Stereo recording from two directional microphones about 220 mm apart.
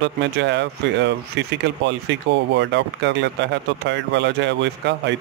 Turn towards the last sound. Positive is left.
turn(degrees=-50)  # may be behind; listen again after turning